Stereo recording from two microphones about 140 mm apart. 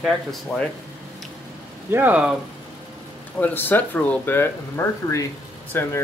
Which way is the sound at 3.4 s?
15° left (ahead or behind).